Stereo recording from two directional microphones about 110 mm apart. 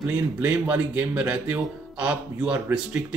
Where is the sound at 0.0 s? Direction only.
15° right (ahead or behind).